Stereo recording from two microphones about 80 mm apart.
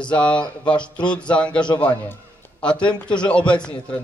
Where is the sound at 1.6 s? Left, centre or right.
Left.